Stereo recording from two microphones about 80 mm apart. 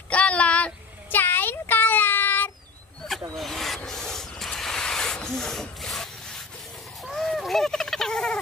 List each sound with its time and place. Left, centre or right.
0.1 s child singing: centre
3.3 s rub: centre
7.1 s a sound: centre